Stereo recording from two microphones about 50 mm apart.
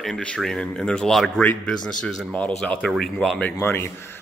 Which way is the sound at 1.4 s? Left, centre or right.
Left.